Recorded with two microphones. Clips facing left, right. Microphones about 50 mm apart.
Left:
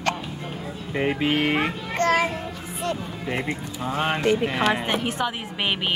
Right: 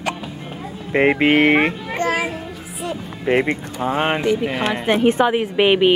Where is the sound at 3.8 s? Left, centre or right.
Right.